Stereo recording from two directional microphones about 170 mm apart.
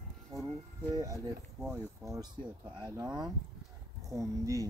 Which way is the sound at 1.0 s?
20° right (ahead or behind).